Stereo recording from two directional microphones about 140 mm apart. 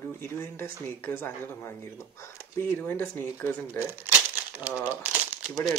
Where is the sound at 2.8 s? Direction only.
10° left (ahead or behind).